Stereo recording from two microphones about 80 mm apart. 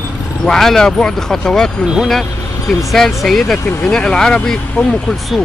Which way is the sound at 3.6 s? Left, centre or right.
Left.